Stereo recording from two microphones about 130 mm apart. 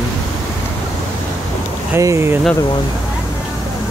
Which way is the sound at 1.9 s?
20° right (ahead or behind).